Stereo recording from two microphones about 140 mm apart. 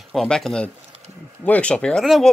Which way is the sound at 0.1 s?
Centre (ahead or behind).